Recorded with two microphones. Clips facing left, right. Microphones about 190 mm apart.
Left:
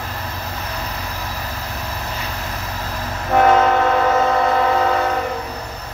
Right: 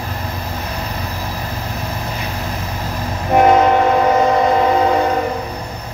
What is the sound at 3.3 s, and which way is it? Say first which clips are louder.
Train: right 3 dB; 15° right (ahead or behind).